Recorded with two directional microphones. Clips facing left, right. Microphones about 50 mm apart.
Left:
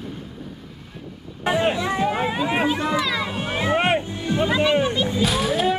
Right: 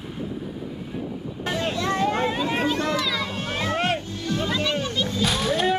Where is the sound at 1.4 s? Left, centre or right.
Left.